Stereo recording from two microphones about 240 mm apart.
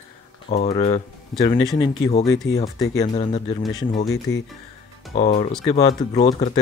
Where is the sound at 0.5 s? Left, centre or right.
Left.